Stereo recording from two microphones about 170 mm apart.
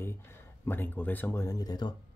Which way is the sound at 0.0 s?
15° left (ahead or behind).